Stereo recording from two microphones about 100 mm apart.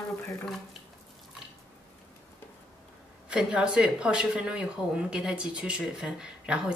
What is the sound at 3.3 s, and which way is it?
Speech, 10° right (ahead or behind).